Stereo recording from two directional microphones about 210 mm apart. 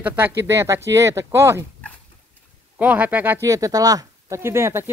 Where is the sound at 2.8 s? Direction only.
5° right (ahead or behind).